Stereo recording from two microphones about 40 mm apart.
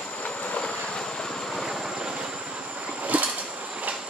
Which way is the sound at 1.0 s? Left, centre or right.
Centre.